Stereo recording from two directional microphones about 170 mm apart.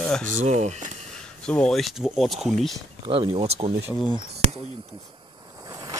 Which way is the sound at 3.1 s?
35° right (ahead or behind).